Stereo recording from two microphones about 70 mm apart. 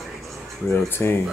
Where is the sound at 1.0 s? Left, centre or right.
Left.